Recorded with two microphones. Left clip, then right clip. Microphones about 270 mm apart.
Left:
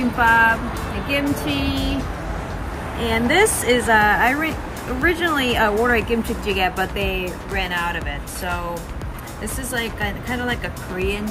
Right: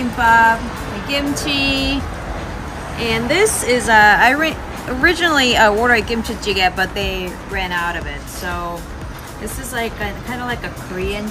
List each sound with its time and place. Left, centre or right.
0.2 s speech: centre
1.4 s music: centre
3.1 s speech: centre
9.8 s speech: centre